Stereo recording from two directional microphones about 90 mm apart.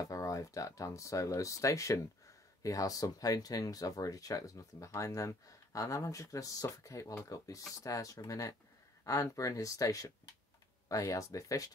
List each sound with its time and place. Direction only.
0.0 s speech: 40° left (ahead or behind)